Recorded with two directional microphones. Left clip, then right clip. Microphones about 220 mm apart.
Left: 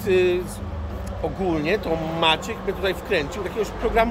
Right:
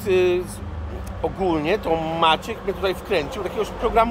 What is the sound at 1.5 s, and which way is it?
Speech, 10° right (ahead or behind).